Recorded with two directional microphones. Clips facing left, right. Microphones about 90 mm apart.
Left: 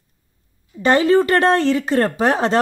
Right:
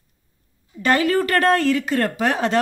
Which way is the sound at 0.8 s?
25° left (ahead or behind).